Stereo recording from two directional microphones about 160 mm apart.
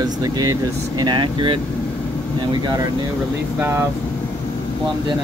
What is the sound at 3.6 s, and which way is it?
Speech, 15° right (ahead or behind).